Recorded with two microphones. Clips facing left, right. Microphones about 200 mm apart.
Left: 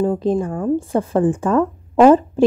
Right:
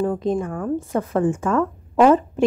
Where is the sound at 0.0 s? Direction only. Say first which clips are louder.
Left 3 dB; 30° left (ahead or behind).